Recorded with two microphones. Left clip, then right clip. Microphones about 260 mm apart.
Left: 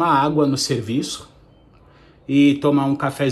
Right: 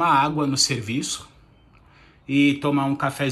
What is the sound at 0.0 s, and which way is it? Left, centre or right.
A man's voice, centre.